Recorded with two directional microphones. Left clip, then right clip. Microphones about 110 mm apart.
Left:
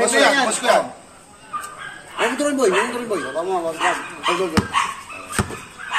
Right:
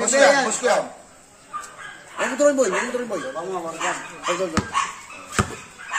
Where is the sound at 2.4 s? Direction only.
30° right (ahead or behind).